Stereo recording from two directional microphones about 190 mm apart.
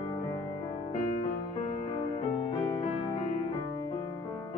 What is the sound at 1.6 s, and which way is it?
Music, 35° left (ahead or behind).